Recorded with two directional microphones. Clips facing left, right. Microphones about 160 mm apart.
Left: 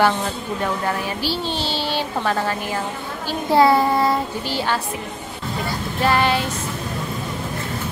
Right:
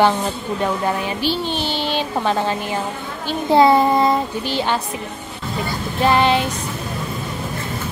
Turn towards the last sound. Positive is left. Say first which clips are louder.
# right 3 dB
turn(degrees=-20)  # may be behind; listen again after turning